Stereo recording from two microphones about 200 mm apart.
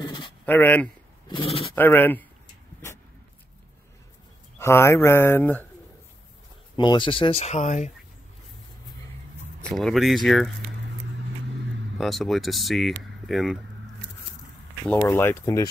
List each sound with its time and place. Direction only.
0.5 s speech: 10° left (ahead or behind)
1.3 s speech: 25° left (ahead or behind)
1.8 s speech: 10° left (ahead or behind)
4.6 s speech: 15° left (ahead or behind)
6.8 s speech: 25° left (ahead or behind)
9.6 s speech: 5° left (ahead or behind)
12.0 s speech: centre (ahead or behind)
14.9 s speech: 10° left (ahead or behind)